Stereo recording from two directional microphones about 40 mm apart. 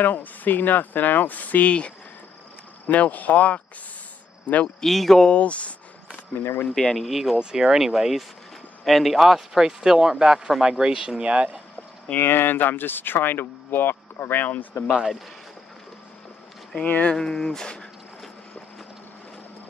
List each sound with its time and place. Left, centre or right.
0.0 s speech: left
1.7 s speech: left
2.9 s speech: left
4.8 s speech: centre
5.2 s speech: left
6.7 s speech: centre
7.1 s speech: centre
7.3 s speech: centre
12.2 s speech: left
14.9 s speech: right
16.8 s speech: left
17.1 s speech: centre